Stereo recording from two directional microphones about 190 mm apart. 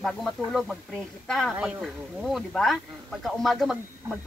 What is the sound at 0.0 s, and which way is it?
A woman's voice, centre (ahead or behind).